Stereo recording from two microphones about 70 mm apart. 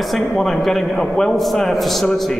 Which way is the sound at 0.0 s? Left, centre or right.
Centre.